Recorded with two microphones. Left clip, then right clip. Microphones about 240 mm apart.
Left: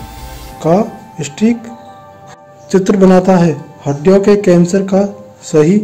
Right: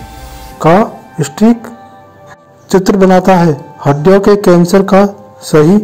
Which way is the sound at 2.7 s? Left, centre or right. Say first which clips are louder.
Right 2 dB; centre.